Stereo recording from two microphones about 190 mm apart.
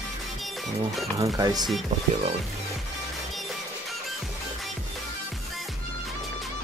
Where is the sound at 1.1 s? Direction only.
15° right (ahead or behind).